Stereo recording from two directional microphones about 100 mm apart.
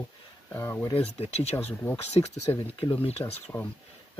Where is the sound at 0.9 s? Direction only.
90° left.